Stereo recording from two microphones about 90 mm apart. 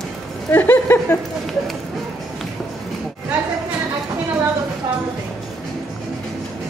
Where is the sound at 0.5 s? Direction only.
20° left (ahead or behind).